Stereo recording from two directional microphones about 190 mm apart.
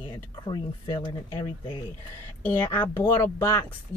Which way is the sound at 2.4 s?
10° left (ahead or behind).